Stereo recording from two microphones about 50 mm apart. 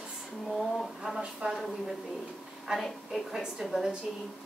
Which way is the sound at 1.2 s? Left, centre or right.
Centre.